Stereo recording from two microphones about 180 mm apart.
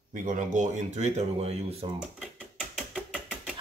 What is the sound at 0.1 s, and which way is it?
Speech, 45° right (ahead or behind).